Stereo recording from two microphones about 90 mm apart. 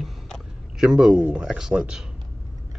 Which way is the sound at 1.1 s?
20° right (ahead or behind).